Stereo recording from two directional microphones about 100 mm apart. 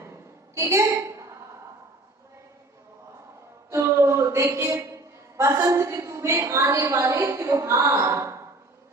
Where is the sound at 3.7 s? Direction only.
25° right (ahead or behind).